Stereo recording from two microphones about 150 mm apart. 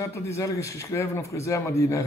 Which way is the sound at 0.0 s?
20° left (ahead or behind).